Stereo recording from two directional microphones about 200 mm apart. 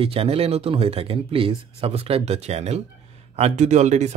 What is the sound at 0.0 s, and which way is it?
Speech, 30° right (ahead or behind).